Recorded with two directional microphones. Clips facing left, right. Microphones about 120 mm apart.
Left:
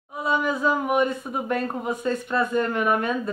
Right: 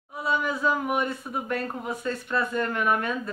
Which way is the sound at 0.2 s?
15° left (ahead or behind).